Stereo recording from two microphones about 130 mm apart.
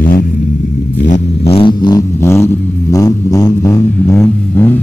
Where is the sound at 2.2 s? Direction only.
20° left (ahead or behind).